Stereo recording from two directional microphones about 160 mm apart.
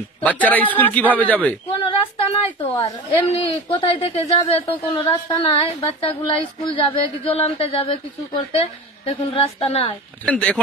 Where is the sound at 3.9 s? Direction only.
35° left (ahead or behind).